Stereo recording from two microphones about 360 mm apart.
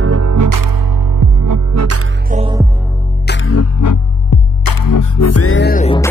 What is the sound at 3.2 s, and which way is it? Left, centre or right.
Music, left.